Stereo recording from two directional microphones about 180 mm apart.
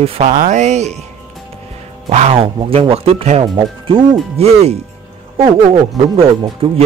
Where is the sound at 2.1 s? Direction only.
35° right (ahead or behind).